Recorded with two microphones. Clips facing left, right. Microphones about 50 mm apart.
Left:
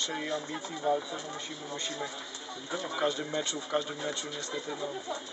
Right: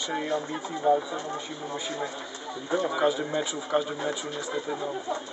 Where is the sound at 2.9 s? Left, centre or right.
Centre.